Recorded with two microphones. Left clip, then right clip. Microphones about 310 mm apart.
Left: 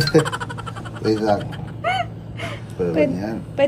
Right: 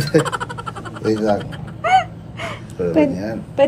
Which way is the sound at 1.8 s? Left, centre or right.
Right.